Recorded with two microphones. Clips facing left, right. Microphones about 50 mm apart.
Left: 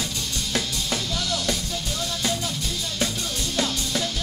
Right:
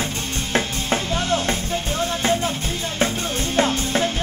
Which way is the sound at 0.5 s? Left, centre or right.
Right.